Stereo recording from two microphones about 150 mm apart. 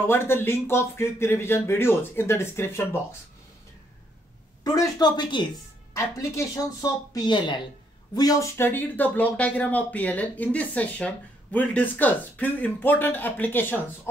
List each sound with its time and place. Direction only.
0.0 s speech: 15° left (ahead or behind)
4.6 s speech: 25° left (ahead or behind)